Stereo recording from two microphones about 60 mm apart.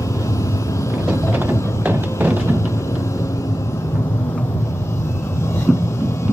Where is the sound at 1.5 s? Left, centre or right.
Right.